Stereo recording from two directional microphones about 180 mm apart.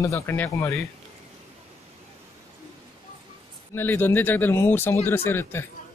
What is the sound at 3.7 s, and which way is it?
Speech, 10° left (ahead or behind).